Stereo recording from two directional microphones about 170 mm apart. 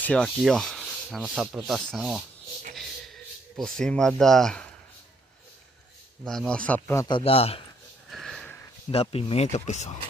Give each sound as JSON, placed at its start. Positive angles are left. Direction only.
{"t": 0.0, "sound": "sanding", "side_deg": 5}
{"t": 0.4, "sound": "rub", "side_deg": 0}
{"t": 3.5, "sound": "speech", "side_deg": 5}
{"t": 6.2, "sound": "speech", "side_deg": 0}
{"t": 7.1, "sound": "speech", "side_deg": 30}
{"t": 8.1, "sound": "sniff", "side_deg": 0}
{"t": 8.9, "sound": "speech", "side_deg": 35}